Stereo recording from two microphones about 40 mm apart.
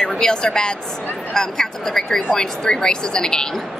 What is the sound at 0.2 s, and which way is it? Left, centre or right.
A woman's voice, centre.